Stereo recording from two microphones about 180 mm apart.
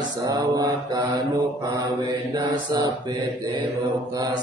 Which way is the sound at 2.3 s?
25° right (ahead or behind).